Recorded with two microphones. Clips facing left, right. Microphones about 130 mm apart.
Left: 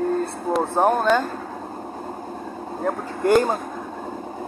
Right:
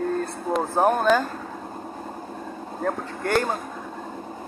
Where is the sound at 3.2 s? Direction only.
15° left (ahead or behind).